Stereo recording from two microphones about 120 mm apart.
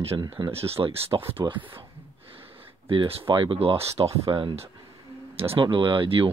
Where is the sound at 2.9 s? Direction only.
50° right (ahead or behind).